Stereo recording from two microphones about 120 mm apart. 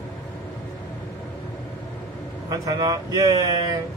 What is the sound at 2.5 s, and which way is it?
Speech, 30° right (ahead or behind).